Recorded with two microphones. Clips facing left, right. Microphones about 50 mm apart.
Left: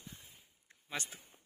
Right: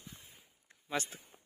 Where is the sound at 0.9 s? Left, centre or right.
Centre.